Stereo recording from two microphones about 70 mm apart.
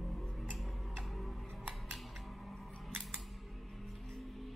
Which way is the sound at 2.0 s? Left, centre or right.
Centre.